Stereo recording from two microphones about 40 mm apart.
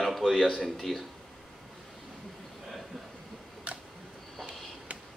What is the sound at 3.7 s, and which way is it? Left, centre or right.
Camera, right.